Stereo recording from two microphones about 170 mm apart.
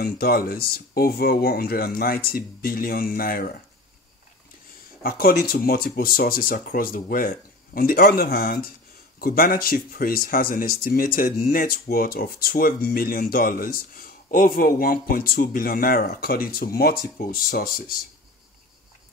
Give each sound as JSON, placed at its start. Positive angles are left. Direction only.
{"t": 0.0, "sound": "speech", "side_deg": 60}
{"t": 5.0, "sound": "speech", "side_deg": 60}